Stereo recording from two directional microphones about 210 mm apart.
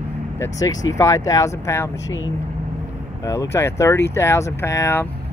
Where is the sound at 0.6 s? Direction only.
15° left (ahead or behind).